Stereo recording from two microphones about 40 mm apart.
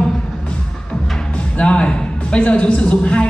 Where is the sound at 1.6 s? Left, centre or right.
Left.